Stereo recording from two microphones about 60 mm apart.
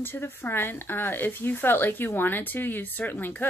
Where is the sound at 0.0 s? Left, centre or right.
Left.